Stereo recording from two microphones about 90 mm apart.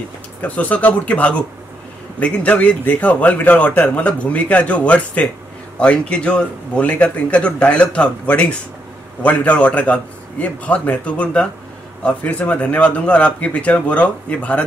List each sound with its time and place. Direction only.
0.4 s a man's voice: 15° left (ahead or behind)